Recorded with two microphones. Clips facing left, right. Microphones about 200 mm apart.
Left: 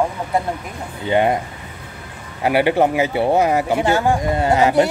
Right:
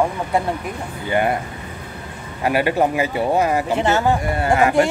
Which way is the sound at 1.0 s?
20° left (ahead or behind).